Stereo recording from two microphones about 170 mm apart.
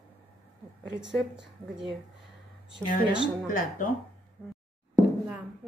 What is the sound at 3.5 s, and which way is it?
Speech, 50° left (ahead or behind).